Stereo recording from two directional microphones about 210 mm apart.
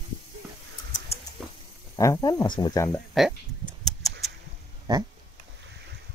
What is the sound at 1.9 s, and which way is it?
Speech, 15° left (ahead or behind).